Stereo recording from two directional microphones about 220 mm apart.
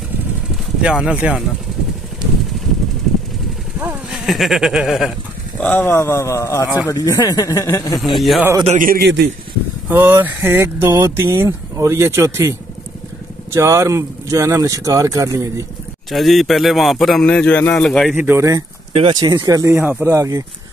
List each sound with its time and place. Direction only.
0.8 s a man's voice: 5° right (ahead or behind)
3.8 s speech: 5° right (ahead or behind); by 8.0 s 15° left (ahead or behind)
8.2 s a man's voice: centre (ahead or behind)
8.6 s a man's voice: 40° right (ahead or behind)
9.8 s speech: 10° right (ahead or behind)
16.1 s a man's voice: centre (ahead or behind)
18.1 s speech: 10° right (ahead or behind)